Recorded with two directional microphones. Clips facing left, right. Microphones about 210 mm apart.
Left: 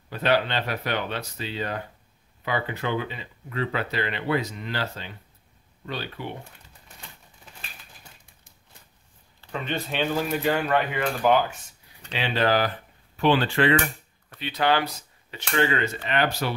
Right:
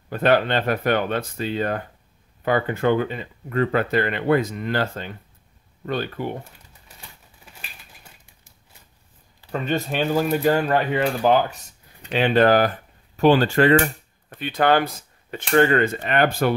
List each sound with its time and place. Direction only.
0.1 s speech: 50° right (ahead or behind)
9.5 s speech: 45° right (ahead or behind)
12.1 s speech: 50° right (ahead or behind)